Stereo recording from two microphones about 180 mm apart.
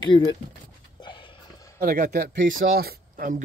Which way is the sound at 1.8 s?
50° right (ahead or behind).